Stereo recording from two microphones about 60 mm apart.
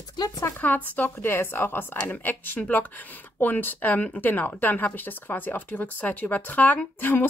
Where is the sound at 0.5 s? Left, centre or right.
Left.